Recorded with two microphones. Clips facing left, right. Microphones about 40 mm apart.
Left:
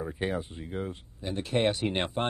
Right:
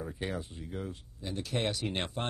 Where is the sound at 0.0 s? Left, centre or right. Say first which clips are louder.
Left 5 dB; left.